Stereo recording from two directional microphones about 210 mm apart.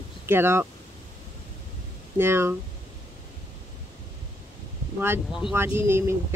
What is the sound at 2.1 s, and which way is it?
Speech, 10° right (ahead or behind).